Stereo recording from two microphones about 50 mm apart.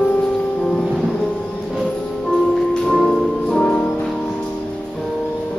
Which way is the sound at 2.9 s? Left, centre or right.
Centre.